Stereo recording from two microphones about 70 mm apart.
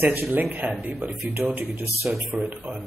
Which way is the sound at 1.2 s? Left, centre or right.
Right.